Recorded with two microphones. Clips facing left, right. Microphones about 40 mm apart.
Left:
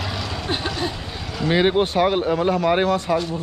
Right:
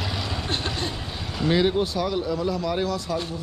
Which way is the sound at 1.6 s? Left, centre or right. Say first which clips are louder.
Left 6 dB; left.